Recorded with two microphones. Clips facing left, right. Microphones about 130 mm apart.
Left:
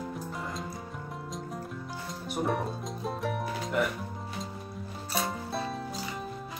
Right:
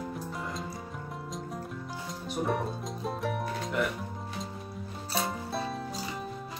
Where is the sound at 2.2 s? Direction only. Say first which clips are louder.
Even; centre (ahead or behind).